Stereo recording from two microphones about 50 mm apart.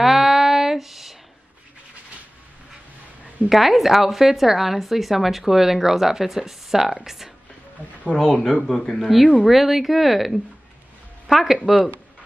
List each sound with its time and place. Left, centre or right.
0.0 s a sound: centre
3.4 s speech: centre
8.1 s speech: left
8.6 s speech: centre